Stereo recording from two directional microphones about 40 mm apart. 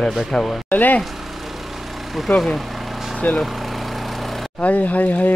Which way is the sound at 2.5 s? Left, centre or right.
Centre.